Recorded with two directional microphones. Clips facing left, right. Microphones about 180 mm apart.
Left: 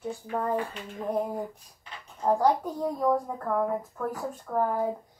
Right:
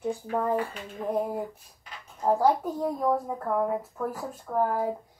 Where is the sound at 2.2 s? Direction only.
5° right (ahead or behind).